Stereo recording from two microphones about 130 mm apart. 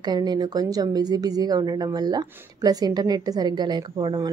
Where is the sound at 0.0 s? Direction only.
30° right (ahead or behind).